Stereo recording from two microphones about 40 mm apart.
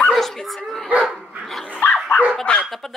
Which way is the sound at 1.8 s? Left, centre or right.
Left.